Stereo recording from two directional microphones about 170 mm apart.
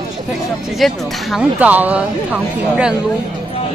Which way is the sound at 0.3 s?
Centre (ahead or behind).